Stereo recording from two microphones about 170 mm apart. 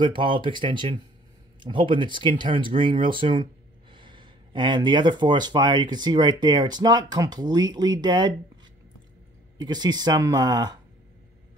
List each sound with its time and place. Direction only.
0.0 s speech: 30° right (ahead or behind)
9.6 s speech: 25° right (ahead or behind)